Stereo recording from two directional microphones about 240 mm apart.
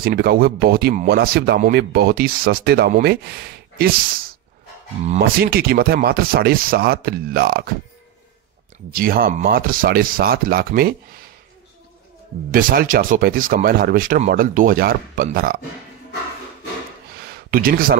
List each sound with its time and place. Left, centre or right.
0.0 s speech: right
8.9 s speech: right
12.5 s speech: right
17.5 s speech: right